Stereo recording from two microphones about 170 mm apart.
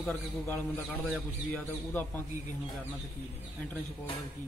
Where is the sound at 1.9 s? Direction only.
10° left (ahead or behind).